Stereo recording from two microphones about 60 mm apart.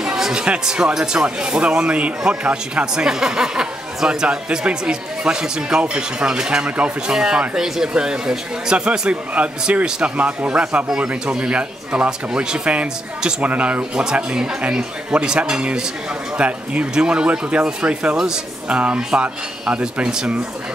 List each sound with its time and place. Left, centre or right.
0.0 s speech: centre